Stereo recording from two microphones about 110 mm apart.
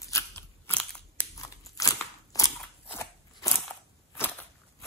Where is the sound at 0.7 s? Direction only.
15° left (ahead or behind).